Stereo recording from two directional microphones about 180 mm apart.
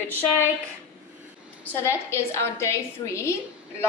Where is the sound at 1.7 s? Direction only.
15° left (ahead or behind).